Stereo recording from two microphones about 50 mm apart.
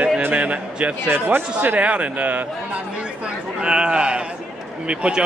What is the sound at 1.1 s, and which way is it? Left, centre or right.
Speech, right.